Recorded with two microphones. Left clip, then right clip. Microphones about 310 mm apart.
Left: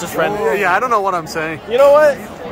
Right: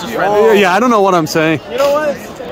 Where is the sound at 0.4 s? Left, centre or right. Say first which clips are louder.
Right 12 dB; right.